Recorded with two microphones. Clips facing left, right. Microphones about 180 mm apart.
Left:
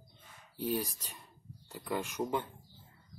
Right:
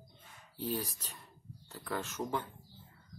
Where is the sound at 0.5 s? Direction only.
15° left (ahead or behind).